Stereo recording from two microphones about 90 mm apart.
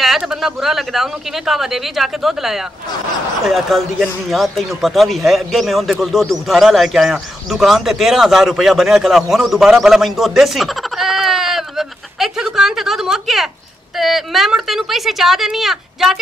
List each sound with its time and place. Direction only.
0.0 s a man's voice: 5° right (ahead or behind)